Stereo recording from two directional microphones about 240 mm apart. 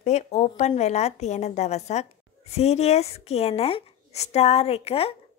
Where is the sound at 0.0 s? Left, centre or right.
Left.